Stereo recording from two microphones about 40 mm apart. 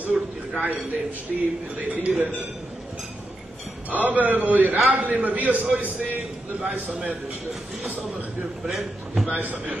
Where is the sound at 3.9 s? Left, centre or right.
Right.